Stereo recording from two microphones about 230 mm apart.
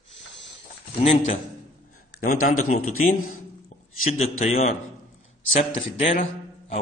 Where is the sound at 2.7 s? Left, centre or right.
Left.